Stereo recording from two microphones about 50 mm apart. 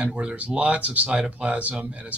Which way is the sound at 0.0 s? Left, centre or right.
Right.